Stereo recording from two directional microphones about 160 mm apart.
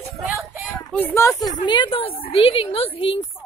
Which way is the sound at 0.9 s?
10° left (ahead or behind).